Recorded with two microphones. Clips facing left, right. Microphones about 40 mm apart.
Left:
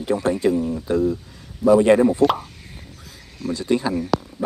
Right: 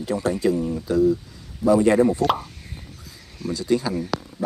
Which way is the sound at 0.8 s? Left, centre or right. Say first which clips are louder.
Right 5 dB; left.